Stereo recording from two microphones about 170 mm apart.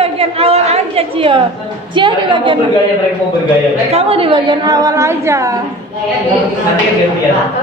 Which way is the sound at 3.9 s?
35° right (ahead or behind).